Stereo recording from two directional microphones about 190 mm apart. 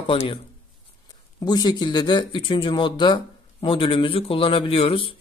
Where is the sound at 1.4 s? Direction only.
20° left (ahead or behind).